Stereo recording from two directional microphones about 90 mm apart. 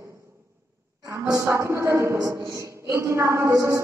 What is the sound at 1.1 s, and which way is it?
A woman's voice, 35° right (ahead or behind).